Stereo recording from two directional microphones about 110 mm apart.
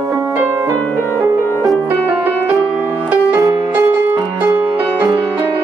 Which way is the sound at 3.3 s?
30° right (ahead or behind).